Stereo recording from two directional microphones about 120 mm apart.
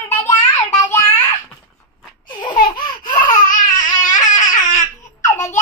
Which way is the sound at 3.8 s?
35° left (ahead or behind).